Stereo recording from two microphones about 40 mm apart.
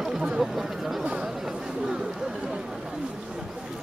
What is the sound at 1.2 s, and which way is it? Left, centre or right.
Chatter, centre.